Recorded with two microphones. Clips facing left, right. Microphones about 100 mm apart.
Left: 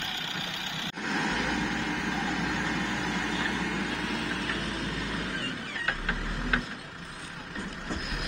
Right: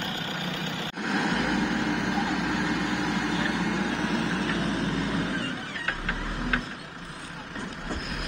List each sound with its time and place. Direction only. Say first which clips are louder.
1.0 s vehicle: right 3 dB; 15° right (ahead or behind)